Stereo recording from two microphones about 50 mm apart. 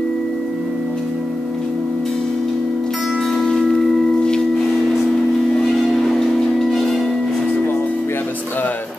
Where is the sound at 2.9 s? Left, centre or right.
Centre.